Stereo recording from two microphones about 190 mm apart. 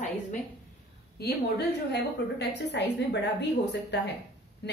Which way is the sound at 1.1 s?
60° left (ahead or behind).